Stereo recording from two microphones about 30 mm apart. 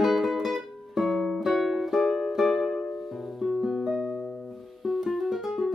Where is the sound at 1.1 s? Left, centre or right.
Centre.